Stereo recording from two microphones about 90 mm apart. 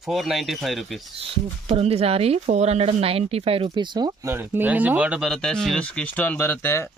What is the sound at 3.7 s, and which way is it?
Speech, 55° right (ahead or behind).